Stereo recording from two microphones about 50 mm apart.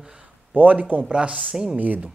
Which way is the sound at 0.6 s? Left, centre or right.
Right.